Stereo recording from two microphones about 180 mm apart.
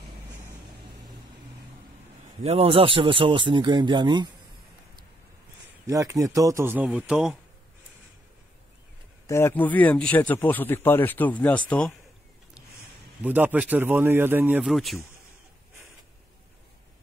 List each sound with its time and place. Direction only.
2.4 s speech: 35° right (ahead or behind)
5.9 s a man's voice: 20° right (ahead or behind)
9.3 s speech: 10° left (ahead or behind)
13.2 s a man's voice: 10° right (ahead or behind)